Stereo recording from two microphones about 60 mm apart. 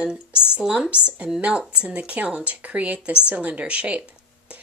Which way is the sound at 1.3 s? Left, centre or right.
Right.